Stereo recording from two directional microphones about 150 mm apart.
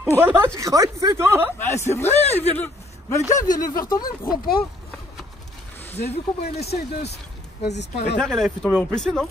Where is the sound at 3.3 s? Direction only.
25° left (ahead or behind).